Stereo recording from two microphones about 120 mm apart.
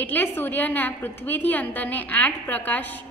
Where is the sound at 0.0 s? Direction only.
15° left (ahead or behind).